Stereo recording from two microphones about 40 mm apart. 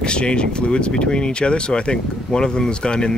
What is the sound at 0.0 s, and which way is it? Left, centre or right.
Speech, left.